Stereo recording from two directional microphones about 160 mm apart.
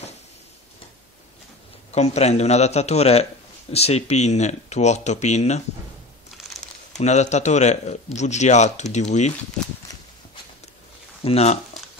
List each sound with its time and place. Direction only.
1.9 s speech: 40° left (ahead or behind)
6.3 s crumpling: centre (ahead or behind)
7.0 s speech: 45° left (ahead or behind)
11.2 s speech: 40° left (ahead or behind)